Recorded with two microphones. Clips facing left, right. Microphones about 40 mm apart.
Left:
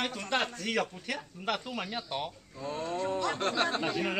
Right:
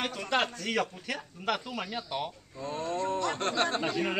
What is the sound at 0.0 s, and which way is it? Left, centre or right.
Speech, centre.